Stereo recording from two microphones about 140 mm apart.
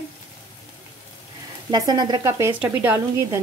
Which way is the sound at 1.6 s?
30° right (ahead or behind).